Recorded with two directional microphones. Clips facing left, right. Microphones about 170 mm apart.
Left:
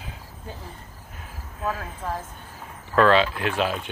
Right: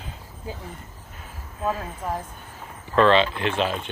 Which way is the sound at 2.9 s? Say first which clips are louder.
Even; 5° left (ahead or behind).